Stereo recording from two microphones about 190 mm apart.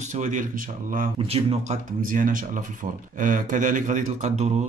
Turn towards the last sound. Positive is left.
turn(degrees=-40)  # may be behind; listen again after turning